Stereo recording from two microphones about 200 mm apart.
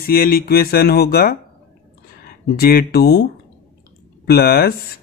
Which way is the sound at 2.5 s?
50° left (ahead or behind).